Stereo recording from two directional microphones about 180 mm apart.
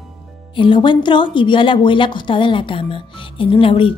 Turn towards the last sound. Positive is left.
turn(degrees=30)  # may be behind; listen again after turning